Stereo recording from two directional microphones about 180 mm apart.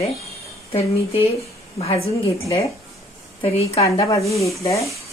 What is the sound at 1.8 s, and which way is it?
Speech, 35° left (ahead or behind).